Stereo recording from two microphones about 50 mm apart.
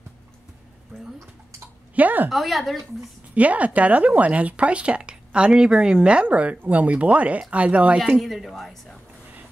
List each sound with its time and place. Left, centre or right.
2.0 s a sound: right
2.2 s a woman's voice: centre
3.3 s speech: right
8.2 s a woman's voice: centre